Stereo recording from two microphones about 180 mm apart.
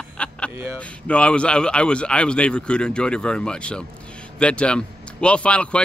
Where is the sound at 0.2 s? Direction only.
5° left (ahead or behind).